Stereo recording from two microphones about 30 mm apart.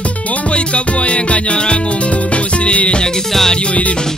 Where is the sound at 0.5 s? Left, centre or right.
Left.